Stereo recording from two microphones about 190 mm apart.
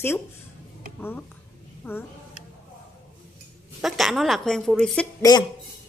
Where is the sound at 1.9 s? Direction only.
10° left (ahead or behind).